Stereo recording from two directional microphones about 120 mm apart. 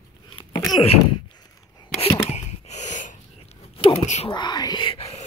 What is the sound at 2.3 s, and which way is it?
Wheeze, 75° left (ahead or behind).